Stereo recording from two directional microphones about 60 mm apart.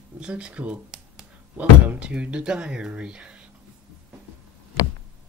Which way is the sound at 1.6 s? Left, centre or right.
Centre.